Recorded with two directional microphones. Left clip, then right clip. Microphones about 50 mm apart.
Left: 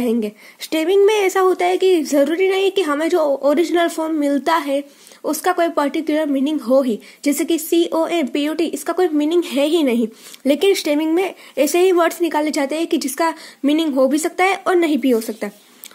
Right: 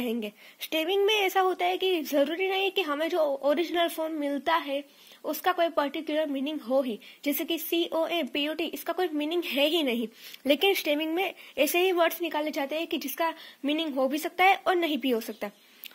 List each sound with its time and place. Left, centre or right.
0.0 s speech: centre
0.7 s speech: left
1.5 s a woman's voice: left
6.4 s speech: left
6.8 s a woman's voice: left
9.6 s speech: centre
11.6 s a woman's voice: left
11.9 s speech: left
13.2 s a woman's voice: left
14.1 s a woman's voice: left
15.1 s speech: centre